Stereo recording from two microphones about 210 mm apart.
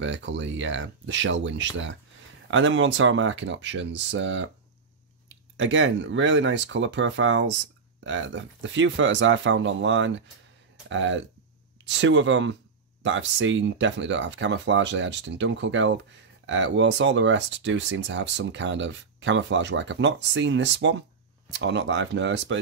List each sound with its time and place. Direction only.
0.0 s speech: 65° right (ahead or behind)
5.6 s speech: 60° right (ahead or behind)